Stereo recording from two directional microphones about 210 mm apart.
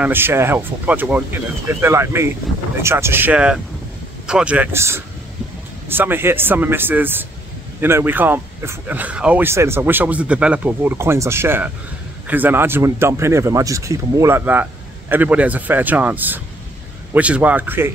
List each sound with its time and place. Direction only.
0.0 s speech: 10° right (ahead or behind)